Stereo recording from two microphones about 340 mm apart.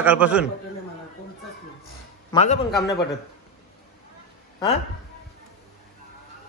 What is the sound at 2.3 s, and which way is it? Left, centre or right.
Speech, centre.